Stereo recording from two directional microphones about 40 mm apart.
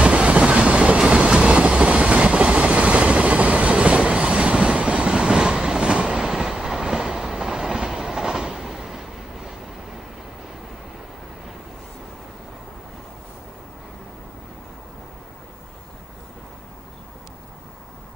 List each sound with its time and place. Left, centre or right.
0.0 s train: right